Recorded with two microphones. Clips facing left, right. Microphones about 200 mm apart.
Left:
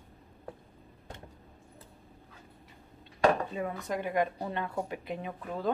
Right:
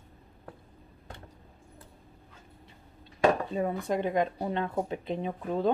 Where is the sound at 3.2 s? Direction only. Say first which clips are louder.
Right 2 dB; 30° right (ahead or behind).